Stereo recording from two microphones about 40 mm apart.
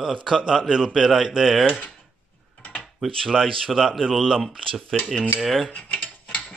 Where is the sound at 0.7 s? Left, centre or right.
Centre.